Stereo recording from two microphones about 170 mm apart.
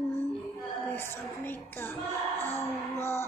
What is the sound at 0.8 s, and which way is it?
Speech, 10° left (ahead or behind).